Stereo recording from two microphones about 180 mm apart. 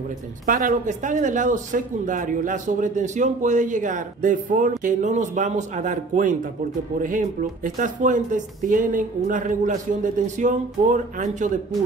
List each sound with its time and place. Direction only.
0.5 s speech: 50° right (ahead or behind)